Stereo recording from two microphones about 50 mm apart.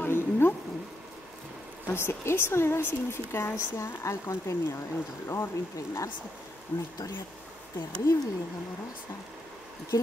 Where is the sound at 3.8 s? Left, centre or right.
Left.